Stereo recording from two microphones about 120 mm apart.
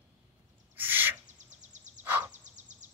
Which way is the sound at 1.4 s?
85° right.